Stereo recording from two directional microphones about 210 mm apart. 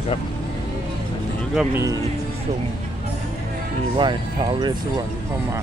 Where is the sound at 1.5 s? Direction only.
15° right (ahead or behind).